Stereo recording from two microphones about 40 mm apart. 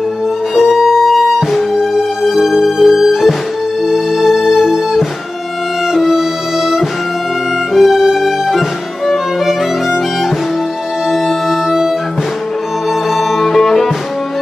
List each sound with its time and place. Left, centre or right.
0.6 s music: centre
11.2 s music: centre
13.1 s music: centre